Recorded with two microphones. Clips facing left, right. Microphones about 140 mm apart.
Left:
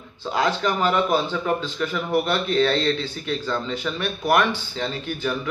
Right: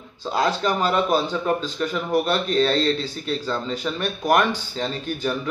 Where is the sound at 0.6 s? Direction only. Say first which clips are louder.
Even; 35° right (ahead or behind).